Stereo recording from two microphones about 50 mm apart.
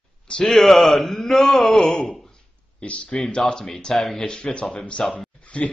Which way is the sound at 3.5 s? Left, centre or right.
Centre.